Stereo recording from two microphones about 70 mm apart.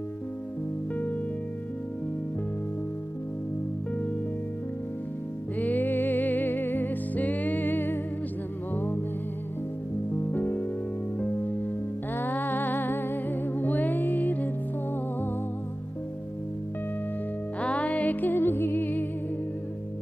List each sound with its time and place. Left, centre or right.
5.6 s music: left
10.3 s music: left
17.6 s music: centre